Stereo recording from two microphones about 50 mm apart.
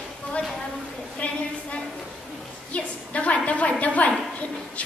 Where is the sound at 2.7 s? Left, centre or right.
Left.